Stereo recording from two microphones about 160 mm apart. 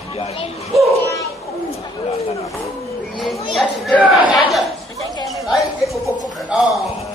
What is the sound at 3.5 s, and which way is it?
Speech, centre (ahead or behind).